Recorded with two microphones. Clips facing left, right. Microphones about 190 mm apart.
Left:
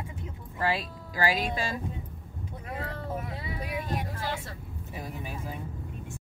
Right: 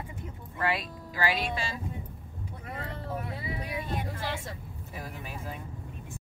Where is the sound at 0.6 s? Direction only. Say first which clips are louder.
Left 1 dB; 30° left (ahead or behind).